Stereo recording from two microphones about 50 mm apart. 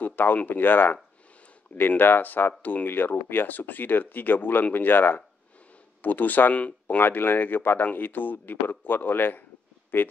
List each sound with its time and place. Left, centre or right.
0.0 s a sound: left
0.5 s speech: left
7.0 s speech: left